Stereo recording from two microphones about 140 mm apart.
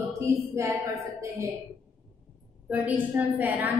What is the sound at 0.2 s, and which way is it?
A woman's voice, 20° right (ahead or behind).